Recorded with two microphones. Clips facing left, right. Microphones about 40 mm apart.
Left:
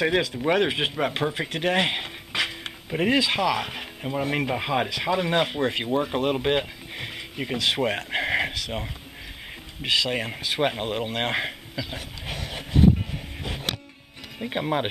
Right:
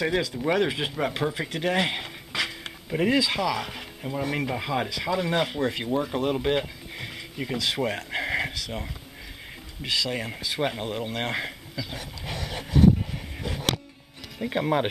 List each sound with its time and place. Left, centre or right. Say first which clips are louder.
0.0 s speech: left 3 dB; left
0.9 s speech: left 2 dB; centre
1.5 s a sound: left 3 dB; left
3.1 s speech: left 3 dB; left
7.8 s a sound: left 3 dB; left
9.8 s speech: left 4 dB; left
10.8 s dog: left 3 dB; left
14.6 s speech: right 1 dB; centre